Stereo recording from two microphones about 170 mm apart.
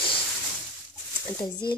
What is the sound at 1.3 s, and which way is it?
Speech, 25° left (ahead or behind).